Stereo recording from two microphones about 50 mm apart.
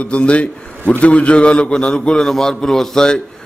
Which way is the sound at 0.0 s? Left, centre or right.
Left.